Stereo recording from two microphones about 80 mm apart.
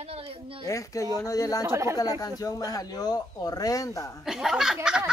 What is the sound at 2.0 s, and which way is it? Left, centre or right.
Speech, left.